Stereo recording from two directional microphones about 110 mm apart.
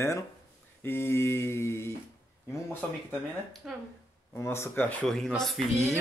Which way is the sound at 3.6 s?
5° right (ahead or behind).